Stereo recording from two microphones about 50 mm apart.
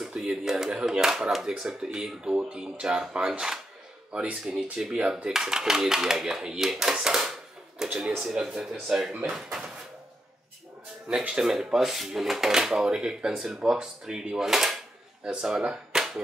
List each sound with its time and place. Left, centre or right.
0.0 s speech: centre
4.1 s speech: right
4.7 s speech: centre
7.8 s a sound: centre
8.4 s speech: centre
11.1 s speech: centre
15.9 s a sound: centre